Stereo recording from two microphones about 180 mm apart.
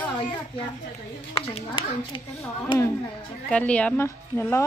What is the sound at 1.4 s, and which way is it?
Speech, 30° left (ahead or behind).